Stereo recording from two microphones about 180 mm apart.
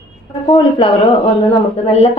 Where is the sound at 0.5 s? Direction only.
30° left (ahead or behind).